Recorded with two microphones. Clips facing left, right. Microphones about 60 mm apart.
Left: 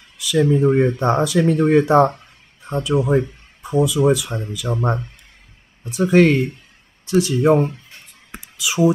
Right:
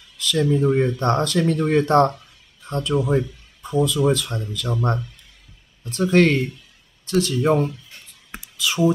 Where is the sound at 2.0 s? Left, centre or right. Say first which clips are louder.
Left 2 dB; left.